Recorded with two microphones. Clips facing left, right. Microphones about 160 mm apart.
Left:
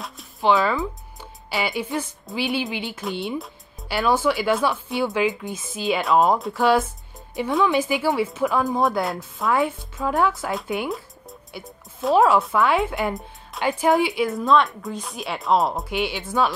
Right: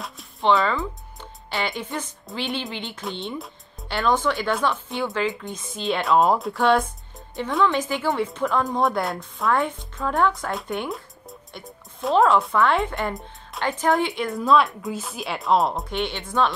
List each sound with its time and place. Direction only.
0.0 s music: centre (ahead or behind)
1.5 s speech: 5° left (ahead or behind)
5.0 s speech: 15° left (ahead or behind)
5.3 s speech: 5° left (ahead or behind)